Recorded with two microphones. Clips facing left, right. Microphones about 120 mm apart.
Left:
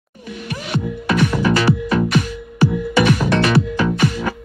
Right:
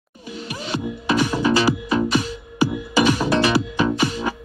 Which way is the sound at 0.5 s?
30° right (ahead or behind).